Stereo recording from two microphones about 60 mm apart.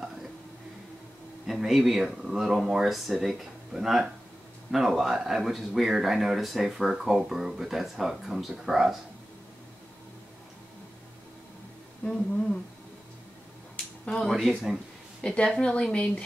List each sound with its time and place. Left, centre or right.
1.5 s speech: centre
12.0 s a woman's voice: centre
14.1 s speech: centre
15.2 s a woman's voice: centre